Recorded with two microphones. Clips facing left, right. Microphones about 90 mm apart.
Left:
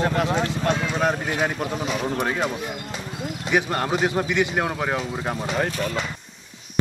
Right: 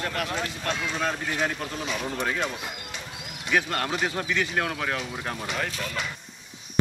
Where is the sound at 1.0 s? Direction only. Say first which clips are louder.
Left 5 dB; 20° left (ahead or behind).